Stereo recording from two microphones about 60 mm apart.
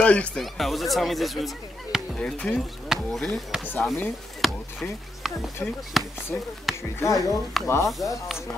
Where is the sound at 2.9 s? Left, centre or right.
Centre.